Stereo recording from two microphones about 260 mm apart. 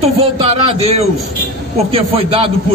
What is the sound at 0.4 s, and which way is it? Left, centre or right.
A man's voice, right.